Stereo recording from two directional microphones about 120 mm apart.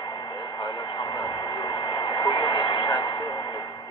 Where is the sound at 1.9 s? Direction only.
35° left (ahead or behind).